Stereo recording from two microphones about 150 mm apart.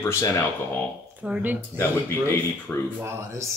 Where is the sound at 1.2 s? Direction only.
10° right (ahead or behind).